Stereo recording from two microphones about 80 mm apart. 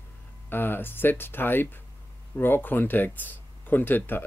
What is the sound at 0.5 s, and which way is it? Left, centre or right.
Speech, left.